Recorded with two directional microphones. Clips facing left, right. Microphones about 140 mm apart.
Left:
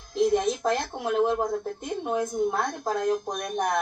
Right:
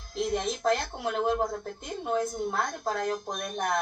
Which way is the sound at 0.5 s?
15° left (ahead or behind).